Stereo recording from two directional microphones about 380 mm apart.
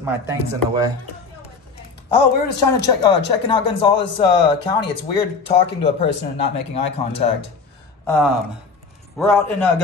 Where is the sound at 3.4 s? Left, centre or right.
Centre.